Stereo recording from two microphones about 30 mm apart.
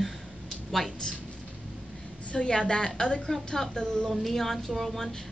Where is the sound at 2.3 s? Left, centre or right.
Left.